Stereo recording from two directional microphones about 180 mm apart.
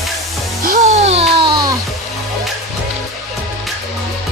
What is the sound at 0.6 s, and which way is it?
Music, 45° right (ahead or behind).